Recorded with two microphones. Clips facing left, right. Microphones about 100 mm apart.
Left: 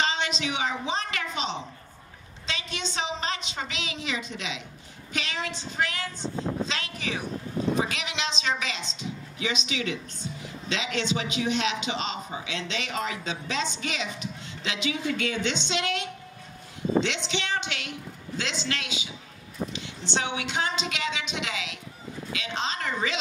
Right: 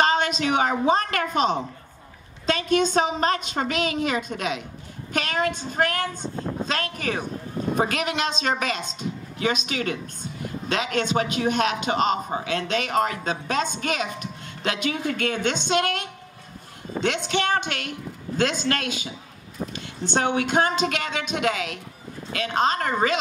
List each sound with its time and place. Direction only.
0.0 s a woman's voice: 50° right (ahead or behind)